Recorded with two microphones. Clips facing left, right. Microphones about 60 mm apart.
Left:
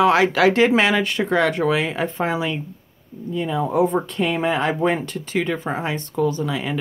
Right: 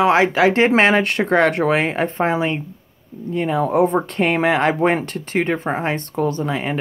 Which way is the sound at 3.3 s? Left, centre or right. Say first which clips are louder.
Right 3 dB; right.